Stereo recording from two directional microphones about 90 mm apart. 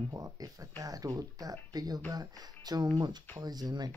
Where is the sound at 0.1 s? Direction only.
40° right (ahead or behind).